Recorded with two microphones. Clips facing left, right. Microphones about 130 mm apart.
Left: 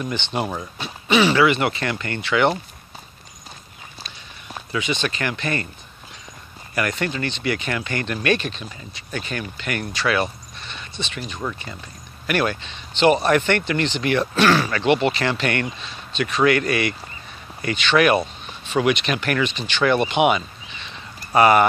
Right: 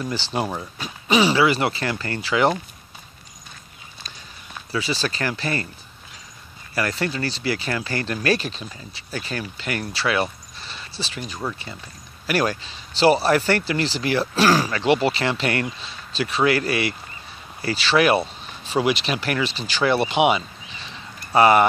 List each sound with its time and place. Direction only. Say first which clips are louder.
0.1 s speech: even; 30° right (ahead or behind)
4.7 s speech: left 1 dB; 35° right (ahead or behind)
6.7 s speech: left 1 dB; 30° right (ahead or behind)